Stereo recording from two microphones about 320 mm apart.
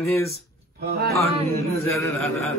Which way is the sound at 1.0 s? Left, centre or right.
Right.